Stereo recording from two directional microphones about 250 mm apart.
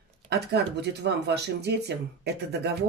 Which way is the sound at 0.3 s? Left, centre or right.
Right.